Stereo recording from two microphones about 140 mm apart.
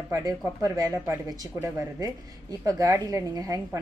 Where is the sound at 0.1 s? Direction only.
20° right (ahead or behind).